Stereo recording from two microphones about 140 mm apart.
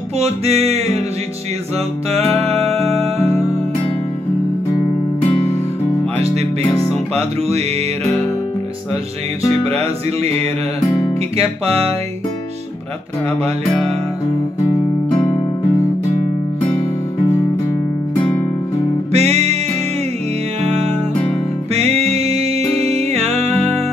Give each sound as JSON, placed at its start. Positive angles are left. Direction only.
{"t": 0.2, "sound": "music", "side_deg": -50}
{"t": 2.1, "sound": "music", "side_deg": -45}
{"t": 6.9, "sound": "music", "side_deg": -45}
{"t": 11.3, "sound": "music", "side_deg": -45}
{"t": 19.1, "sound": "music", "side_deg": -50}
{"t": 21.7, "sound": "music", "side_deg": -45}